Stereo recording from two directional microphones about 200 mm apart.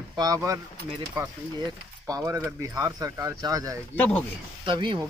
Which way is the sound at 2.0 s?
15° right (ahead or behind).